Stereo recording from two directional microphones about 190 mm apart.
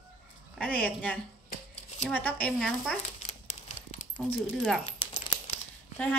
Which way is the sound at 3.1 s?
35° left (ahead or behind).